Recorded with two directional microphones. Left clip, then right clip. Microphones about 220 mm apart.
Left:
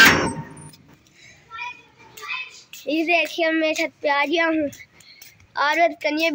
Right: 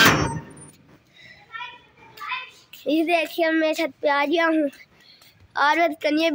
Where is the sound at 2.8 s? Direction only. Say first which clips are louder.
Left 1 dB; 10° right (ahead or behind).